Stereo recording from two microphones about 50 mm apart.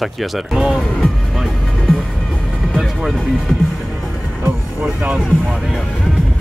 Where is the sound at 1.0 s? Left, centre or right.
Centre.